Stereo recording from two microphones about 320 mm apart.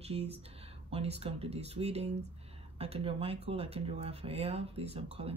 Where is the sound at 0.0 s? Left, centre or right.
Centre.